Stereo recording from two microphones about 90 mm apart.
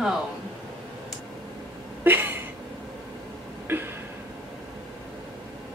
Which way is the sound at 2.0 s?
20° right (ahead or behind).